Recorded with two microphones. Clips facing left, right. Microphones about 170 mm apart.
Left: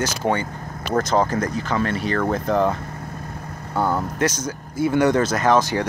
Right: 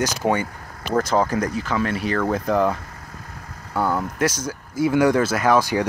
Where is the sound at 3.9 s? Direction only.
5° right (ahead or behind).